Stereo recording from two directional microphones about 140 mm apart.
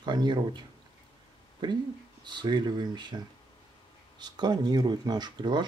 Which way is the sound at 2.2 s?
30° right (ahead or behind).